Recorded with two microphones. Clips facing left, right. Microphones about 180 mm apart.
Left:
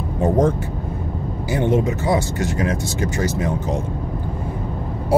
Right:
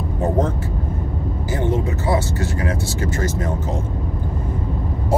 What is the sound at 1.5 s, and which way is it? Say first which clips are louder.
Speech: left 4 dB; 15° left (ahead or behind).